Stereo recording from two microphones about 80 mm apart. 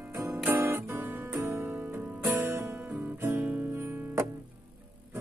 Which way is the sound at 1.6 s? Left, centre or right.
Right.